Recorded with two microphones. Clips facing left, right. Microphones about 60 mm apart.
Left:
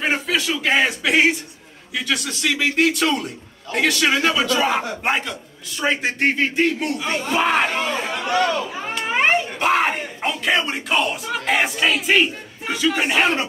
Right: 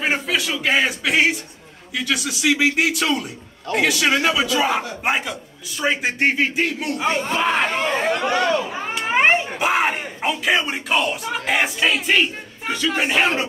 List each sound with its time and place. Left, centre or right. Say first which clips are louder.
0.0 s speech: even; centre
8.3 s a sound: even; centre
9.6 s speech: left 1 dB; centre